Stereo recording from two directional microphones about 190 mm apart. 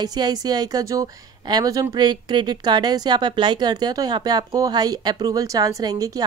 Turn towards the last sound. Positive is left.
turn(degrees=-20)  # may be behind; listen again after turning